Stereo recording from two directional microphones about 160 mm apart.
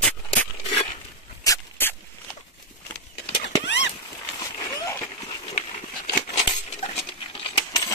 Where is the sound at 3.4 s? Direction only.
90° left.